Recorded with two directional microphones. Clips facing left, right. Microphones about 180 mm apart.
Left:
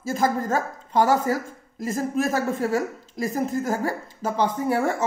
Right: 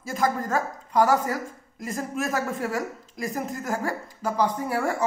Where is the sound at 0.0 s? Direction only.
30° left (ahead or behind).